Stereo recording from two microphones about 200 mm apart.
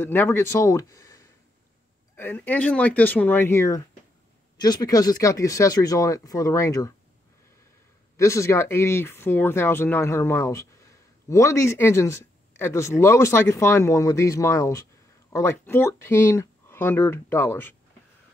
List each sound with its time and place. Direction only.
0.0 s speech: 10° left (ahead or behind)
8.2 s speech: 15° left (ahead or behind)